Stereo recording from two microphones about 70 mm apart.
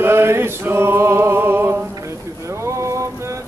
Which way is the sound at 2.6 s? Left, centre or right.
Right.